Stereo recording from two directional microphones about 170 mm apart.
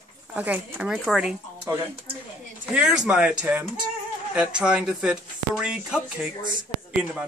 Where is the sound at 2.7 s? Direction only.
5° right (ahead or behind).